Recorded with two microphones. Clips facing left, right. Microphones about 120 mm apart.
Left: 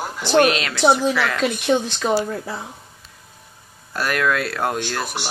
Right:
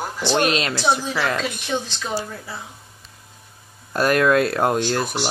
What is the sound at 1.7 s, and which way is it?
Speech, 55° left (ahead or behind).